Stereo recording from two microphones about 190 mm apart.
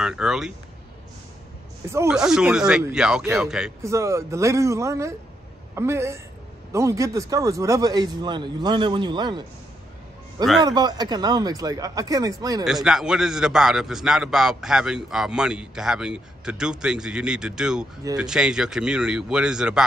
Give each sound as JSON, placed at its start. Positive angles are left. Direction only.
{"t": 0.0, "sound": "speech", "side_deg": -5}
{"t": 2.0, "sound": "a man's voice", "side_deg": -5}
{"t": 3.8, "sound": "speech", "side_deg": -15}
{"t": 10.6, "sound": "speech", "side_deg": -20}
{"t": 12.6, "sound": "a man's voice", "side_deg": 0}